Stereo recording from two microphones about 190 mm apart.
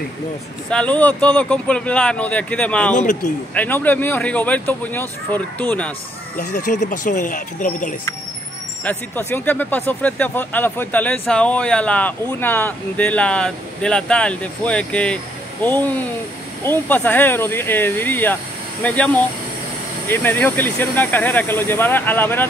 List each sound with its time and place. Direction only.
0.7 s speech: 5° left (ahead or behind)
6.5 s speech: 40° left (ahead or behind)
8.8 s speech: 10° left (ahead or behind)